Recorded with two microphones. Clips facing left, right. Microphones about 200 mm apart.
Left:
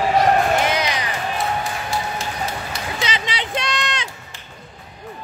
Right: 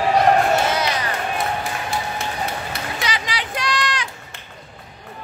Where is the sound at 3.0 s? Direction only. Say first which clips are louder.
Left 2 dB; 25° left (ahead or behind).